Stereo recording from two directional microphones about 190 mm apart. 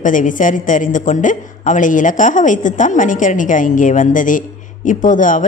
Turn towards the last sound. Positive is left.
turn(degrees=45)  # may be behind; listen again after turning